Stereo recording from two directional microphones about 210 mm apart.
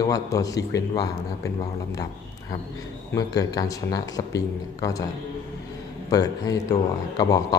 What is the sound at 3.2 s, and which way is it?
Speech, 15° left (ahead or behind).